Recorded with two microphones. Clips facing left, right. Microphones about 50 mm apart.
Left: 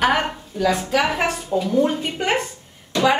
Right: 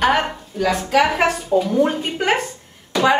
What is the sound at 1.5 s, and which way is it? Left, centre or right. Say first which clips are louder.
Speech: right 1 dB; right.